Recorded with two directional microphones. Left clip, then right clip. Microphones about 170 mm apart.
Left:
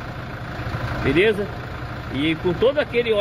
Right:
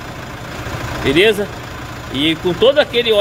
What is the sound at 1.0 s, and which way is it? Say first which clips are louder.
Speech: right 6 dB; 15° right (ahead or behind).